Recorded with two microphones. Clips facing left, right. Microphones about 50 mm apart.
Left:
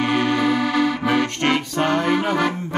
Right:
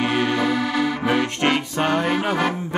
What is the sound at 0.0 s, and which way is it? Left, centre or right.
Music, centre.